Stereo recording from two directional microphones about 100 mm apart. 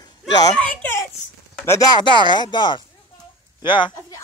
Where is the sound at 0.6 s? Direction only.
15° left (ahead or behind).